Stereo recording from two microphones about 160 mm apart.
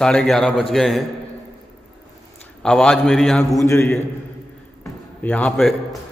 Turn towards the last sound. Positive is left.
turn(degrees=5)  # may be behind; listen again after turning